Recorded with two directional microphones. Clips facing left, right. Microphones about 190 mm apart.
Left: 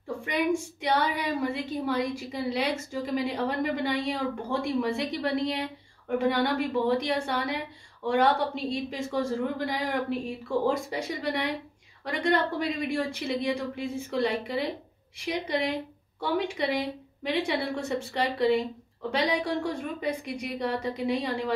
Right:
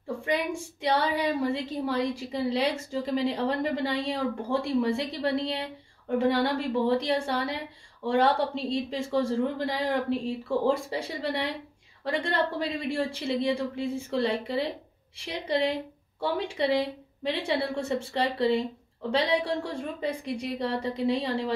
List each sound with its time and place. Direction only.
0.8 s a woman's voice: 30° right (ahead or behind)